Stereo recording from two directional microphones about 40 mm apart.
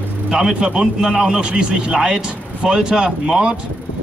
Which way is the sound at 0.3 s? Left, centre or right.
Right.